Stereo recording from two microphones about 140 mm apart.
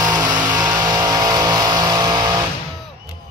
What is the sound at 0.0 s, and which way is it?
Vehicle, 25° right (ahead or behind).